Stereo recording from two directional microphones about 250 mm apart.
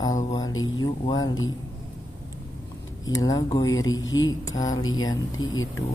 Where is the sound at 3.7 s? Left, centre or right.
Left.